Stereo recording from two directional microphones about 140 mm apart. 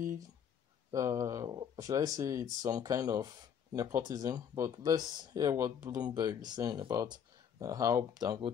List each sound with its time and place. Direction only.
0.9 s speech: 25° right (ahead or behind)